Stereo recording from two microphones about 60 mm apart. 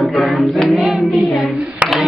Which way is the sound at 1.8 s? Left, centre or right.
Right.